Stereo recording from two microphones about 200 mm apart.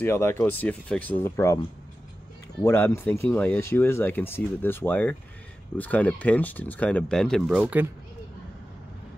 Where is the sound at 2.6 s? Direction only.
15° left (ahead or behind).